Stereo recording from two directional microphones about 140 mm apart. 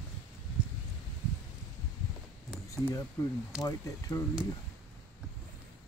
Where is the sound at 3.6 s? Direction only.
25° left (ahead or behind).